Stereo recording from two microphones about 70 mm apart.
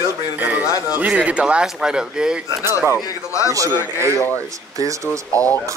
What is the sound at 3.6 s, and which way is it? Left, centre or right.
Speech, left.